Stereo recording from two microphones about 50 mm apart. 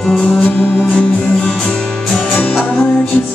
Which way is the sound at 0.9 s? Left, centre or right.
Centre.